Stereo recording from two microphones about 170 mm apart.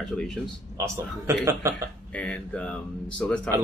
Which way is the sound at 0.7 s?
15° right (ahead or behind).